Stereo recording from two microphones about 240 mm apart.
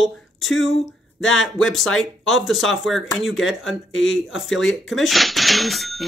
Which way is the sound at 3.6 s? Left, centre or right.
Left.